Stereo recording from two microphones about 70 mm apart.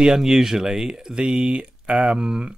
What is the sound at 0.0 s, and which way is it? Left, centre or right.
Speech, centre.